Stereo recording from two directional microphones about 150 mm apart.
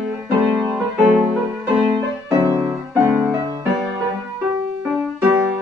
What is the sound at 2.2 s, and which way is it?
Music, 20° right (ahead or behind).